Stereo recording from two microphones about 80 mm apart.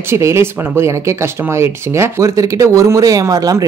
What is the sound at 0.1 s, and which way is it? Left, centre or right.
Speech, right.